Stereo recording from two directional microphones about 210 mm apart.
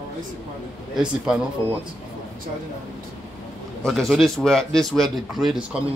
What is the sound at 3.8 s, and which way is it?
Speech, centre (ahead or behind).